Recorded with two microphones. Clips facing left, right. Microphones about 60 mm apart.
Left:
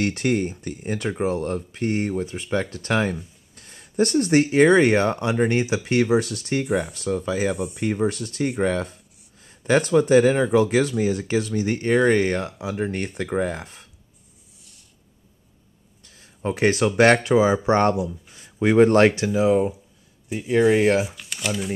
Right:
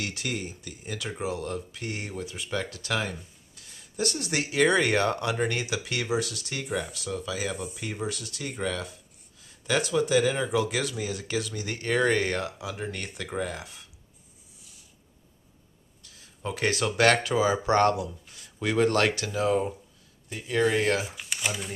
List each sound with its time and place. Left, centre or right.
0.0 s speech: left
6.6 s speech: centre
6.9 s speech: left
14.6 s a sound: centre
16.0 s speech: left; by 21.1 s centre
21.1 s speech: centre